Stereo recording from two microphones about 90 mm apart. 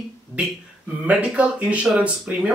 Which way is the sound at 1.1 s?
15° right (ahead or behind).